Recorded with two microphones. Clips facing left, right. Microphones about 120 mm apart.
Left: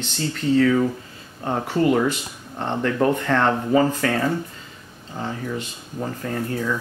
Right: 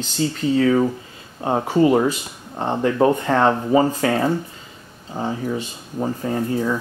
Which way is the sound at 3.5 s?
20° right (ahead or behind).